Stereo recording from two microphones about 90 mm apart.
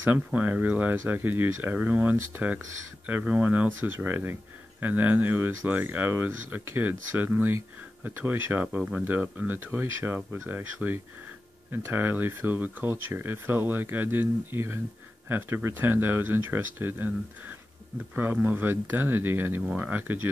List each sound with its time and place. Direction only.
0.0 s speech: 20° right (ahead or behind)
9.7 s speech: 30° right (ahead or behind)